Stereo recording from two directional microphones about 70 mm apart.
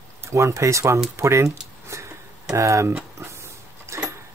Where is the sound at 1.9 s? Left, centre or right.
Right.